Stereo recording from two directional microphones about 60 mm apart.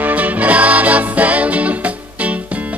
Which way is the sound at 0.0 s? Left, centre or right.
Right.